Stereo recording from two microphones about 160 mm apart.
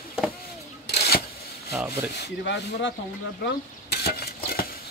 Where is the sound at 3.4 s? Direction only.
85° left.